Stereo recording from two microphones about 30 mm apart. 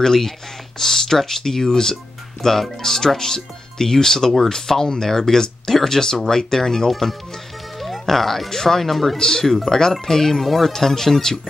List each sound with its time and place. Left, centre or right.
0.0 s speech: centre
6.9 s speech: centre
7.8 s music: centre
8.5 s speech: centre